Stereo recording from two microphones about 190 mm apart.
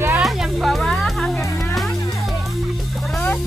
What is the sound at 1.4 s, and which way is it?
Music, 15° left (ahead or behind).